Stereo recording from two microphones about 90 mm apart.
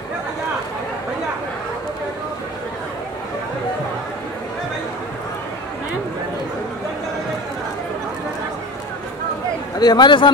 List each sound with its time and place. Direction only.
9.8 s a man's voice: 55° left (ahead or behind)